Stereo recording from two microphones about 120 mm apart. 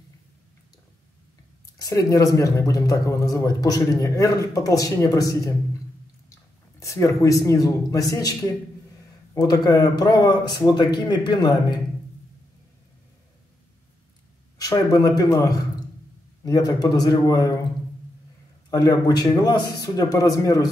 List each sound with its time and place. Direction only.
1.8 s speech: 30° left (ahead or behind)
6.8 s a man's voice: 25° left (ahead or behind)
14.6 s a man's voice: 30° left (ahead or behind)
18.7 s a man's voice: 30° left (ahead or behind)